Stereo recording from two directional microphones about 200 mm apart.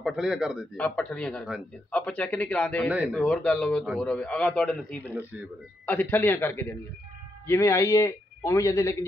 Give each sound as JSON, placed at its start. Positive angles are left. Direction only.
{"t": 0.0, "sound": "a man's voice", "side_deg": 0}